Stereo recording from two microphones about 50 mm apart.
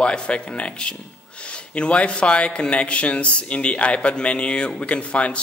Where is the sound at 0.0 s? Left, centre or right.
Left.